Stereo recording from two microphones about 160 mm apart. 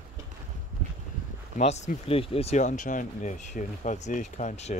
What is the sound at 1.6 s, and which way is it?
Speech, 45° left (ahead or behind).